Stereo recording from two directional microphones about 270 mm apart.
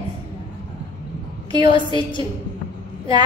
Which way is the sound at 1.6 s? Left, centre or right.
Centre.